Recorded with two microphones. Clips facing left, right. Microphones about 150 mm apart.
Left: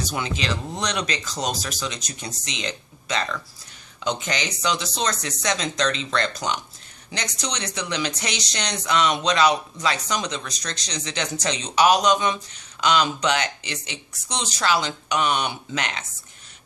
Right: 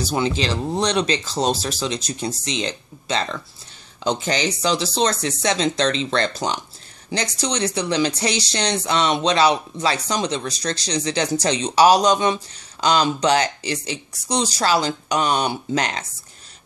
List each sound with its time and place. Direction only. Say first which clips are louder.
0.0 s speech: right 6 dB; 30° right (ahead or behind)